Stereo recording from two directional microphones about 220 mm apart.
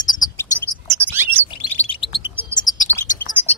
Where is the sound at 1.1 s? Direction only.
10° right (ahead or behind).